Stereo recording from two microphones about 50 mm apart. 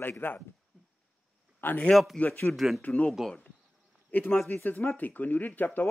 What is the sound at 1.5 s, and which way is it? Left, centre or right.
Speech, left.